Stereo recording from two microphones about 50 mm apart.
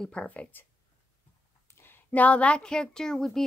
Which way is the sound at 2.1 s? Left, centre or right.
Left.